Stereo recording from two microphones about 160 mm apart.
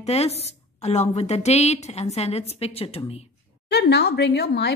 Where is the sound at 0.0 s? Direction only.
40° left (ahead or behind).